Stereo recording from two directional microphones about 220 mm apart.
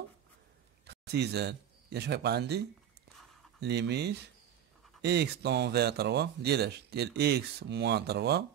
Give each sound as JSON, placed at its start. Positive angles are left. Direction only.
{"t": 0.8, "sound": "speech", "side_deg": -50}
{"t": 3.6, "sound": "a man's voice", "side_deg": -50}